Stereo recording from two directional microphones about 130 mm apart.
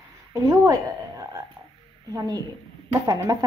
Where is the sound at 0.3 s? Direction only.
25° right (ahead or behind).